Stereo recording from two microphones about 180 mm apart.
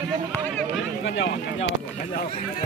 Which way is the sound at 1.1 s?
90° left.